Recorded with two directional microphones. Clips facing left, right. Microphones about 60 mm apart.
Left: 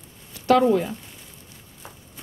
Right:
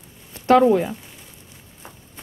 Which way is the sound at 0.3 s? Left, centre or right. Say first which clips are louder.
Right 3 dB; right.